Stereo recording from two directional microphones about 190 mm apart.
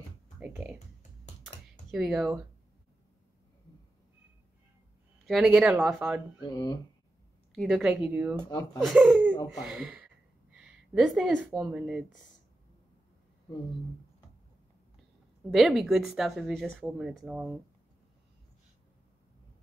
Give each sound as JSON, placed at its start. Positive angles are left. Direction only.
{"t": 0.4, "sound": "speech", "side_deg": -10}
{"t": 1.4, "sound": "computer keyboard", "side_deg": -5}
{"t": 5.2, "sound": "speech", "side_deg": 0}
{"t": 6.4, "sound": "speech", "side_deg": 20}
{"t": 7.5, "sound": "a woman's voice", "side_deg": -5}
{"t": 15.5, "sound": "speech", "side_deg": 0}